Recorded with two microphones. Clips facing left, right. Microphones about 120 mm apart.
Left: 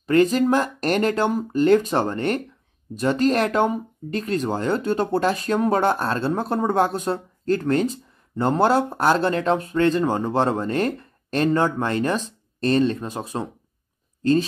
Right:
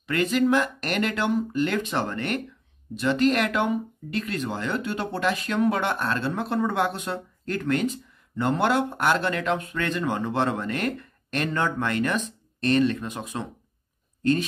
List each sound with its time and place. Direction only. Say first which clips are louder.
0.0 s speech: left 5 dB; 35° left (ahead or behind)